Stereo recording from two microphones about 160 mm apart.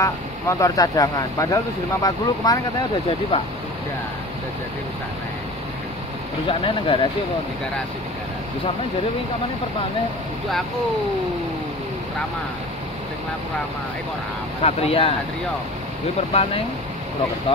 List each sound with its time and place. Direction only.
0.0 s speech: 20° left (ahead or behind)
3.1 s speech: 35° left (ahead or behind)
6.6 s speech: 35° left (ahead or behind)
14.6 s speech: 40° left (ahead or behind)